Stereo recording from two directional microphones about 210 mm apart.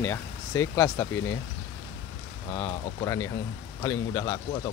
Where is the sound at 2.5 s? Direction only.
15° left (ahead or behind).